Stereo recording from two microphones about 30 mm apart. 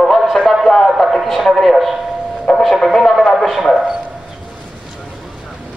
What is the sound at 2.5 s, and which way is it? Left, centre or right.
Speech, left.